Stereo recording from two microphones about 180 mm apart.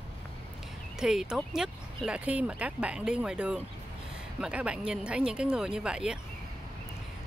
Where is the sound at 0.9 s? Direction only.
5° right (ahead or behind).